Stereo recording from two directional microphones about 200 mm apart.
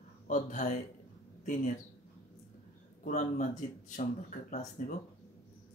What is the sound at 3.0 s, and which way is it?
Speech, 40° left (ahead or behind).